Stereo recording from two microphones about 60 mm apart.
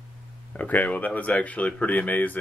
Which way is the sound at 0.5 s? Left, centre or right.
Left.